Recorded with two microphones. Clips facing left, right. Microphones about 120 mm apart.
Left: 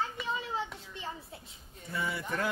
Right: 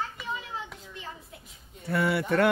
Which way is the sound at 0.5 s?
30° left (ahead or behind).